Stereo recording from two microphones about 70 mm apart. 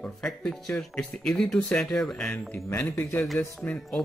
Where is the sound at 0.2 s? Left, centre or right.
Centre.